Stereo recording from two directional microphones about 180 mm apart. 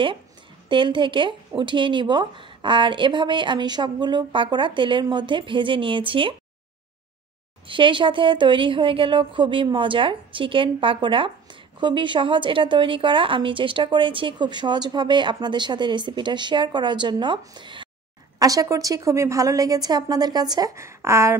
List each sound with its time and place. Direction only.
0.7 s a woman's voice: 25° right (ahead or behind)
7.6 s a woman's voice: 30° right (ahead or behind)